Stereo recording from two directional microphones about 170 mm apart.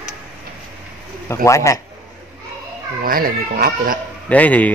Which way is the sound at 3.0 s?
60° right (ahead or behind).